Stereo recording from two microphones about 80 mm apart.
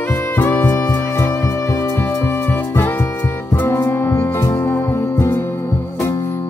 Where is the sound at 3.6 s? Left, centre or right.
Left.